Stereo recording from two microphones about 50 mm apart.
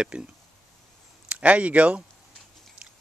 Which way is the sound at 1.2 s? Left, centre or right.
Right.